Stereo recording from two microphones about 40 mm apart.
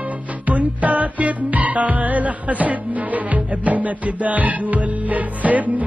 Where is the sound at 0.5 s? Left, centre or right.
Right.